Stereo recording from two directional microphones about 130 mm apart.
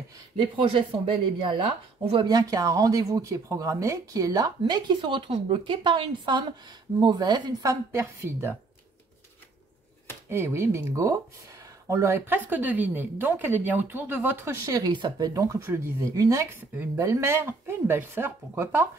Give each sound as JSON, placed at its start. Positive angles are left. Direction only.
{"t": 0.4, "sound": "speech", "side_deg": -40}
{"t": 2.2, "sound": "a woman's voice", "side_deg": -30}
{"t": 10.3, "sound": "a woman's voice", "side_deg": -20}